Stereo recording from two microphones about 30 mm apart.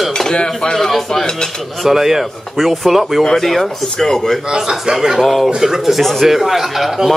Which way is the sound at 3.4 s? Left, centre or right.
Centre.